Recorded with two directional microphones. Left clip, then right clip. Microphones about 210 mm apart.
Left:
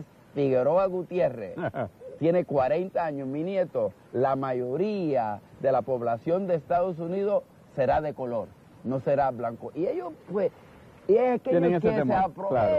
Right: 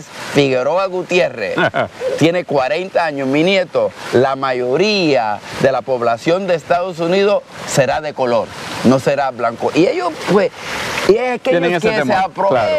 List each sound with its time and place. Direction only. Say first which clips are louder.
0.3 s speech: right 9 dB; 5° right (ahead or behind)
8.4 s speech: right 16 dB; 20° right (ahead or behind)
9.0 s speech: right 10 dB; 5° right (ahead or behind)